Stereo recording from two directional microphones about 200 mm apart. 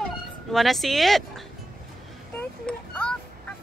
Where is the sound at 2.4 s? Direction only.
5° left (ahead or behind).